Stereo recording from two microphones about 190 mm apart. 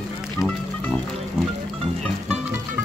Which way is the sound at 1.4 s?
Centre (ahead or behind).